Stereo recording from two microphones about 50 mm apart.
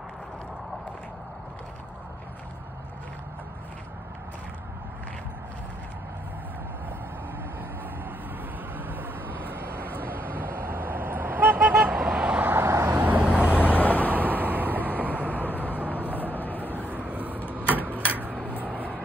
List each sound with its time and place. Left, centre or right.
8.7 s vehicle: right
11.7 s vehicle: centre
12.8 s vehicle: right
13.6 s vehicle: left
14.4 s vehicle: right
15.4 s vehicle: left
17.0 s vehicle: right
17.6 s a sound: left
18.8 s vehicle: left